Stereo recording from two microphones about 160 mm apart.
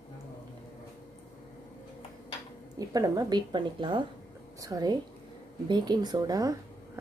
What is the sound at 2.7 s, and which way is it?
Speech, 20° right (ahead or behind).